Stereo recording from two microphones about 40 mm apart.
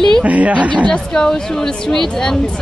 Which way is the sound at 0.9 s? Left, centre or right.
Centre.